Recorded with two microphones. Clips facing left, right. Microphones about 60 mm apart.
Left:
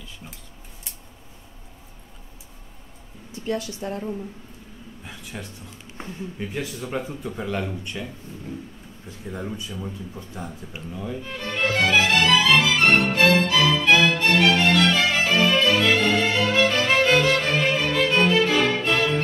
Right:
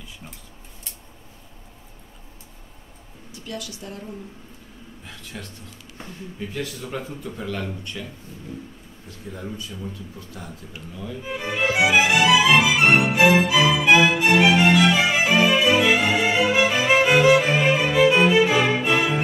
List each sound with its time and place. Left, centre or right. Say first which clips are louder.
3.3 s speech: left 7 dB; left
5.0 s a sound: left 1 dB; centre
6.8 s speech: left 2 dB; centre
9.3 s speech: left 2 dB; left
11.2 s music: right 3 dB; centre